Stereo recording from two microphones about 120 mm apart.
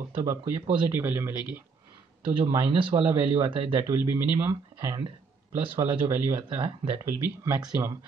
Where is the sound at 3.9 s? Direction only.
20° right (ahead or behind).